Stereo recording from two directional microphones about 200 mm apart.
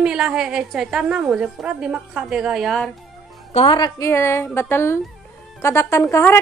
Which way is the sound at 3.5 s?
25° left (ahead or behind).